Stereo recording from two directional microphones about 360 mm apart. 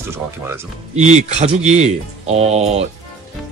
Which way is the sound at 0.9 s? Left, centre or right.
Centre.